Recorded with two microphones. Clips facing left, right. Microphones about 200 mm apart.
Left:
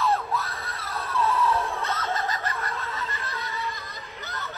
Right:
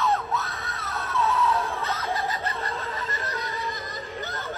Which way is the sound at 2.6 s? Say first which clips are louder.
Right 1 dB; 30° right (ahead or behind).